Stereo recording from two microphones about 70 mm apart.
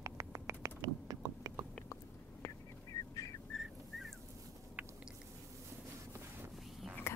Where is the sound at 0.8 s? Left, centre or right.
Right.